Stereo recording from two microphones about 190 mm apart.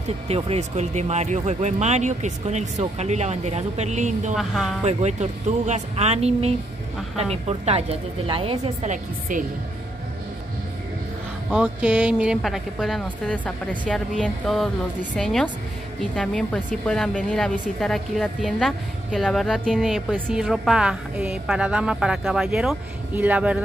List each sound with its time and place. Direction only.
0.3 s speech: 35° right (ahead or behind)
4.4 s a woman's voice: centre (ahead or behind)
4.8 s speech: 35° right (ahead or behind)
11.5 s a woman's voice: 5° right (ahead or behind)